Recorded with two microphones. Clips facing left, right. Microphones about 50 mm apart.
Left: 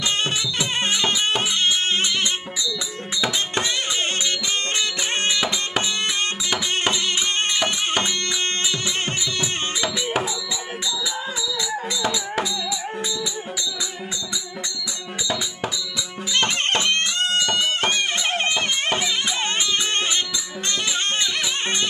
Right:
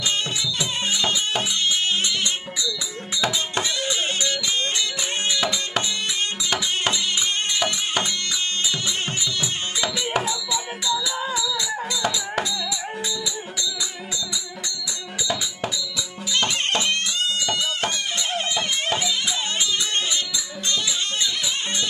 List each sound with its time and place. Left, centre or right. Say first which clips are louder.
0.0 s music: left 2 dB; left
3.6 s music: left 1 dB; left
5.4 s music: left 1 dB; centre
5.9 s music: left 3 dB; left
9.8 s music: right 1 dB; centre
12.0 s music: left 1 dB; centre
16.3 s music: left 2 dB; left